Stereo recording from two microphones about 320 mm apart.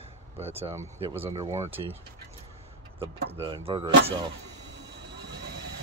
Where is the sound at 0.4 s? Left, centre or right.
Centre.